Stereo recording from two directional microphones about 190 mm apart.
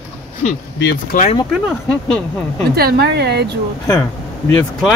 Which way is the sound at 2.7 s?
55° right (ahead or behind).